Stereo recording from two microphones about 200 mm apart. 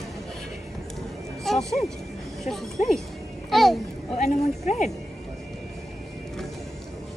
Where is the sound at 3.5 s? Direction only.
Centre (ahead or behind).